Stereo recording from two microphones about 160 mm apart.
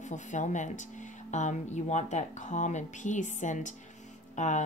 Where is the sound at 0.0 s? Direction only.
50° left (ahead or behind).